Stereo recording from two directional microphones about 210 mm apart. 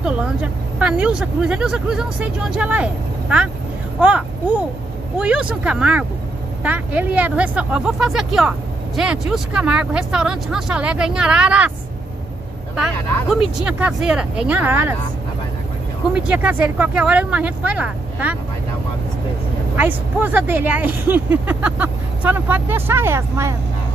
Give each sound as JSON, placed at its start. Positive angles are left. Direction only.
{"t": 0.0, "sound": "speech", "side_deg": -5}
{"t": 12.7, "sound": "speech", "side_deg": -5}
{"t": 16.1, "sound": "speech", "side_deg": -5}
{"t": 19.8, "sound": "speech", "side_deg": -10}